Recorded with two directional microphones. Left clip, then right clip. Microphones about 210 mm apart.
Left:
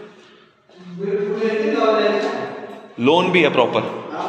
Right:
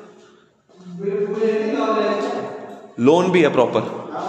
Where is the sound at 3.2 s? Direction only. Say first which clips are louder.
Even; 35° right (ahead or behind).